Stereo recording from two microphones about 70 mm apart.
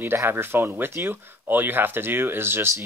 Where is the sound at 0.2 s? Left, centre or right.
Right.